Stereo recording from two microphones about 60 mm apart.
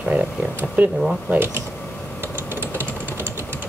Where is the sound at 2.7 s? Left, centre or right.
Right.